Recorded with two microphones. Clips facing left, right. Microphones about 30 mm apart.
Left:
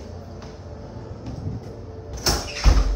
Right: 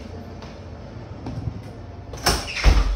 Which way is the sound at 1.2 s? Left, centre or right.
Right.